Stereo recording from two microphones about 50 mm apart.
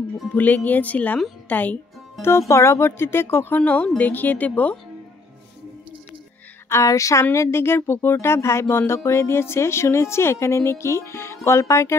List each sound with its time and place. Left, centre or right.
0.3 s speech: left
2.2 s speech: left
3.5 s speech: left
6.7 s speech: left
7.3 s speech: left